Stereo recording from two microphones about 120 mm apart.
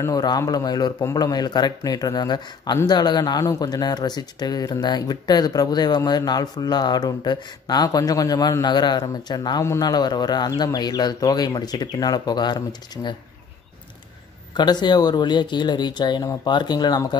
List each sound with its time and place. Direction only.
0.0 s speech: 30° left (ahead or behind)
14.5 s speech: 35° left (ahead or behind)